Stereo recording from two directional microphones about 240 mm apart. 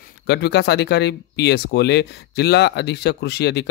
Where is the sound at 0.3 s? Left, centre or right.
Left.